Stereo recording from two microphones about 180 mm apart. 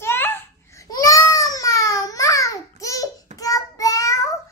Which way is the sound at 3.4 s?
20° left (ahead or behind).